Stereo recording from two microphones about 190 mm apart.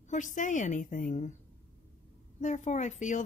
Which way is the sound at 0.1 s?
40° left (ahead or behind).